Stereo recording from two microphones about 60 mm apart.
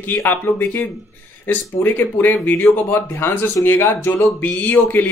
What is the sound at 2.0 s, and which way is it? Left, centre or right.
Speech, left.